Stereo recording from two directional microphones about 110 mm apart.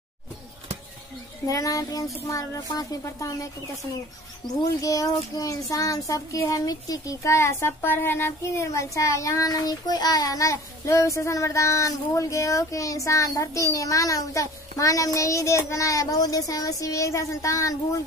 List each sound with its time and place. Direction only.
1.5 s speech: 30° left (ahead or behind)
4.4 s speech: 45° left (ahead or behind)
4.8 s child singing: 30° left (ahead or behind)